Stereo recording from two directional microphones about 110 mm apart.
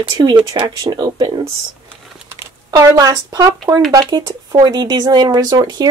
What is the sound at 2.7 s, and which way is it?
Speech, 35° right (ahead or behind).